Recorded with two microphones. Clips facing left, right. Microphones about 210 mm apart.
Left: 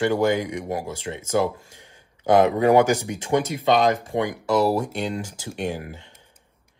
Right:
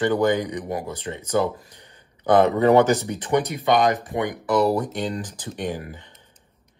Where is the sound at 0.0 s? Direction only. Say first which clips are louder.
Even; 10° left (ahead or behind).